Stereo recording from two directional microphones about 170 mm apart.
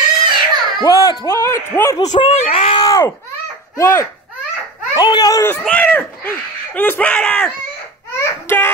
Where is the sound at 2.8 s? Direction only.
20° left (ahead or behind).